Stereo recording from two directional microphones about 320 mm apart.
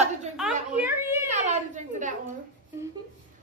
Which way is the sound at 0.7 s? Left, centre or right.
Centre.